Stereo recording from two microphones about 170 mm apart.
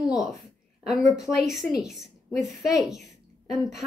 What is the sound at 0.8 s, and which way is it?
A woman's voice, centre (ahead or behind).